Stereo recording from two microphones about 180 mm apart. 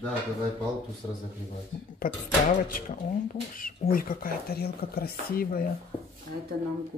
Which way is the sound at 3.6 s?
50° left (ahead or behind).